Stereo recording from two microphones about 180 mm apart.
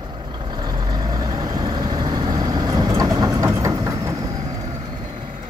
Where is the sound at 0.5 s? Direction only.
25° right (ahead or behind).